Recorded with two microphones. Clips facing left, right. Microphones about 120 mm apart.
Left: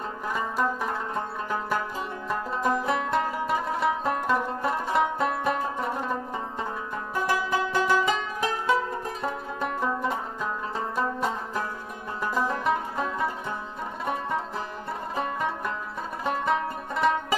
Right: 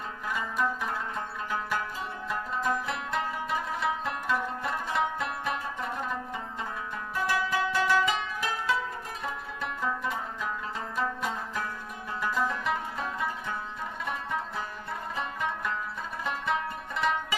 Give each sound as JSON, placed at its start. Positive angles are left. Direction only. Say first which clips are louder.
{"t": 0.3, "sound": "music", "louder": "left 3 dB", "side_deg": 40}
{"t": 7.2, "sound": "music", "louder": "left 1 dB", "side_deg": 40}
{"t": 15.1, "sound": "music", "louder": "left 5 dB", "side_deg": 40}